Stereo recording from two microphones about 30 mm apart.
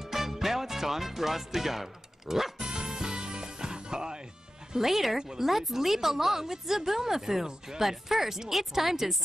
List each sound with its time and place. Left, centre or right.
0.0 s music: centre
2.6 s music: right
4.7 s speech: centre